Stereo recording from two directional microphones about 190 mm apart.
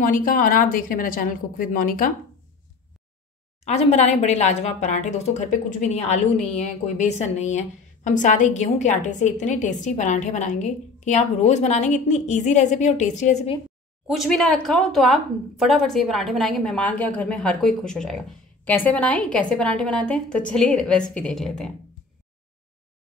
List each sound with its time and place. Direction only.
0.0 s speech: 45° left (ahead or behind)
3.6 s speech: 35° left (ahead or behind)
14.0 s a woman's voice: centre (ahead or behind)